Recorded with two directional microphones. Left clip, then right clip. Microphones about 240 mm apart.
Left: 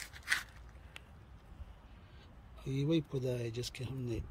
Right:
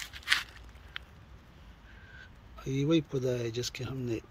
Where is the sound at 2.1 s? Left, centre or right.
Centre.